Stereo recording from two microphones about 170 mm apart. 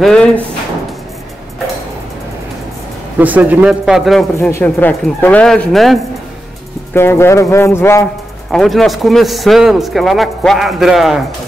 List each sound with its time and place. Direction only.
0.0 s a man's voice: 5° left (ahead or behind)
3.2 s a man's voice: 10° right (ahead or behind)
4.5 s speech: 10° left (ahead or behind)
6.9 s speech: 15° left (ahead or behind)
8.5 s a man's voice: centre (ahead or behind)